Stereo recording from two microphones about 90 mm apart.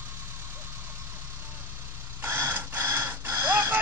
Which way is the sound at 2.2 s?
25° right (ahead or behind).